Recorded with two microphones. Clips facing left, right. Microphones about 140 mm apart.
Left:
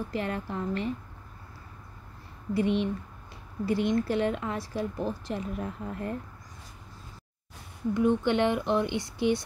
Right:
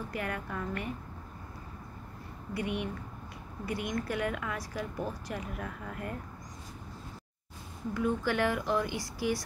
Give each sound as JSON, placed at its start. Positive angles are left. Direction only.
{"t": 0.1, "sound": "speech", "side_deg": 25}
{"t": 2.5, "sound": "speech", "side_deg": 25}
{"t": 7.9, "sound": "speech", "side_deg": 20}